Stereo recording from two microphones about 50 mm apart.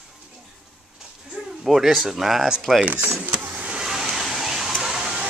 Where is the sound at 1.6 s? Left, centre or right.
Centre.